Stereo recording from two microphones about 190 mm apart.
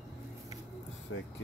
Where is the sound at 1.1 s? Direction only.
75° left (ahead or behind).